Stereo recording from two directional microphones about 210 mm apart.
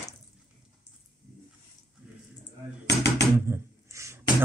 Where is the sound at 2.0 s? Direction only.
5° right (ahead or behind).